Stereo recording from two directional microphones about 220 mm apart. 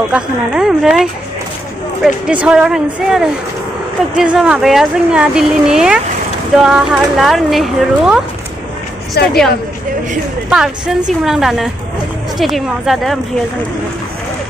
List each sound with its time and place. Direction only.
0.1 s speech: 5° right (ahead or behind)
2.2 s speech: 5° right (ahead or behind)
9.2 s speech: 45° left (ahead or behind)
10.5 s speech: centre (ahead or behind)